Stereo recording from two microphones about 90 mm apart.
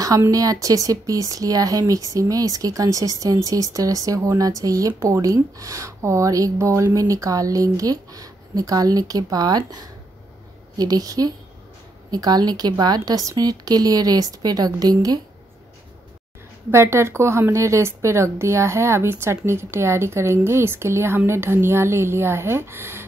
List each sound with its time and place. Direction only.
0.3 s speech: 40° right (ahead or behind)
10.8 s speech: 45° right (ahead or behind)
16.7 s a woman's voice: 30° right (ahead or behind)